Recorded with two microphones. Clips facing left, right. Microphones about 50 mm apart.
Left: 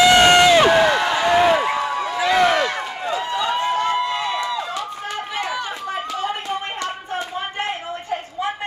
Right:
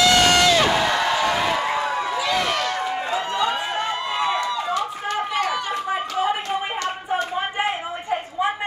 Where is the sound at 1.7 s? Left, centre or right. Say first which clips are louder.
Left 1 dB; centre.